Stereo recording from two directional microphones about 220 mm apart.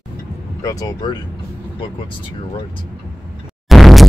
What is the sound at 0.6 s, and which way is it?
Speech, 15° left (ahead or behind).